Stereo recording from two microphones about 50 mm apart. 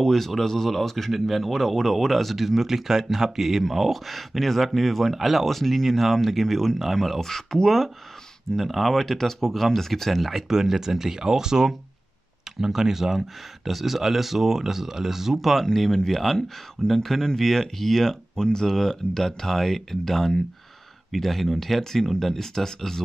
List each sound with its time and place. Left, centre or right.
0.0 s speech: centre
15.6 s speech: centre